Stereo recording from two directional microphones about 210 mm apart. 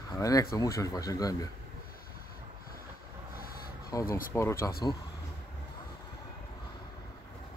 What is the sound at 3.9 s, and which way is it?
Speech, 15° left (ahead or behind).